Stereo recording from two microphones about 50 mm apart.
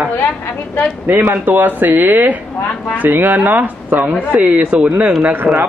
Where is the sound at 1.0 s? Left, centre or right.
Right.